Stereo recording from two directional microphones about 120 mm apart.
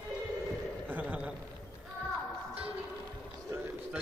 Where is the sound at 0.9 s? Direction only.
10° right (ahead or behind).